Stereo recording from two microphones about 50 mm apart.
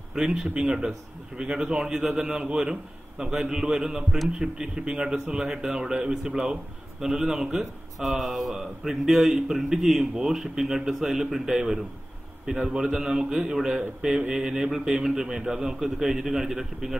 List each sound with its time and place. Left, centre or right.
0.1 s a man's voice: centre